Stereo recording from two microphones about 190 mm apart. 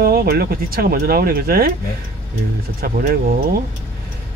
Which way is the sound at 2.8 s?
50° right (ahead or behind).